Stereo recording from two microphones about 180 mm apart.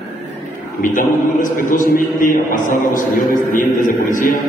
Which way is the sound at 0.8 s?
50° left (ahead or behind).